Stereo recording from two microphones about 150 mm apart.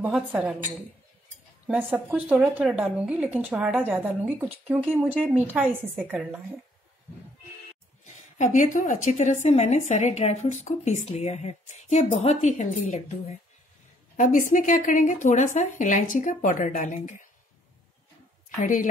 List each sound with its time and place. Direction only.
0.3 s speech: 5° right (ahead or behind)
1.7 s speech: 5° right (ahead or behind)
8.0 s a woman's voice: 55° left (ahead or behind)
14.1 s a woman's voice: 60° left (ahead or behind)
18.6 s a woman's voice: 60° left (ahead or behind)